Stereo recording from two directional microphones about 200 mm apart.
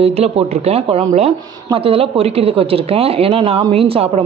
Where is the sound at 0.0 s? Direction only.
30° right (ahead or behind).